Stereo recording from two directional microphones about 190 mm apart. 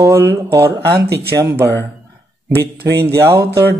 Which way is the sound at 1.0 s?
55° right (ahead or behind).